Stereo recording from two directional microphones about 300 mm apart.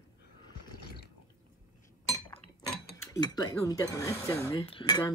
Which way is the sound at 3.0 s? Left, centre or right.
Centre.